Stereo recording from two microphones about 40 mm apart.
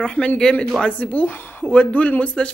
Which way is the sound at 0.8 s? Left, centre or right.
Left.